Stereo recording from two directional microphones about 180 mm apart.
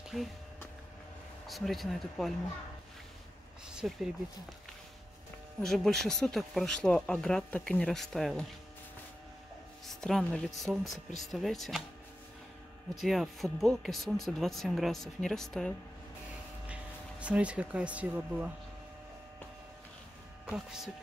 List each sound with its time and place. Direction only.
0.1 s speech: centre (ahead or behind)
1.5 s speech: centre (ahead or behind)
3.8 s speech: 5° right (ahead or behind)
5.6 s speech: centre (ahead or behind)
9.8 s speech: centre (ahead or behind)
13.0 s speech: centre (ahead or behind)
20.4 s speech: 5° right (ahead or behind)